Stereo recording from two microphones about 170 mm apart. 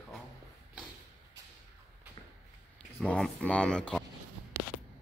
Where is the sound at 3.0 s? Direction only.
5° left (ahead or behind).